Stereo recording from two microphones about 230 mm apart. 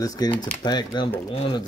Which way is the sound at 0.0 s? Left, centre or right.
Centre.